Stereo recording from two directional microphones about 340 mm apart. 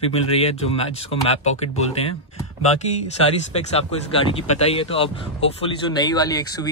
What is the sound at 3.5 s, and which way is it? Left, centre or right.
Speech, centre.